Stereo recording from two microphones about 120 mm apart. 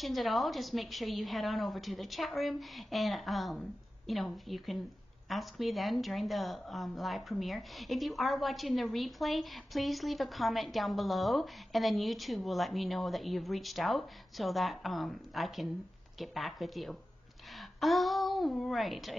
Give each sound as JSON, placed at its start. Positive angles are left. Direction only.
{"t": 0.0, "sound": "a woman's voice", "side_deg": 0}